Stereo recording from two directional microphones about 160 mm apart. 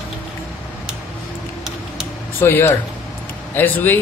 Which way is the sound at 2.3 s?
15° left (ahead or behind).